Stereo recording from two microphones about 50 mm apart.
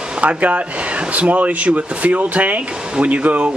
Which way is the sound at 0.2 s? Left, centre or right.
Right.